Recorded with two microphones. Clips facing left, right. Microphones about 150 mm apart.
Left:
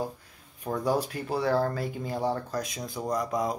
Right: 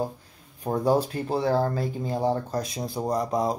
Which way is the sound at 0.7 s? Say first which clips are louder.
Right 5 dB; 30° right (ahead or behind).